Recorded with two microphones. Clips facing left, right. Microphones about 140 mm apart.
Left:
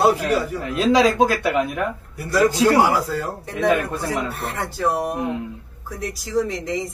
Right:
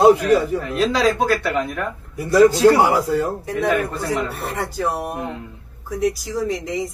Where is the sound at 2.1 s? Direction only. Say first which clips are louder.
Right 5 dB; 25° right (ahead or behind).